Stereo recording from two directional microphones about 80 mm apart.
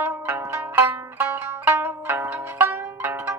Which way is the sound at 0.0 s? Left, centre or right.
Right.